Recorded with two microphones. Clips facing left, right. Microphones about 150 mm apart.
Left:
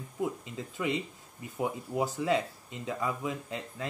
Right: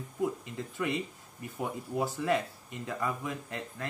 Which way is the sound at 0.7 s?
20° left (ahead or behind).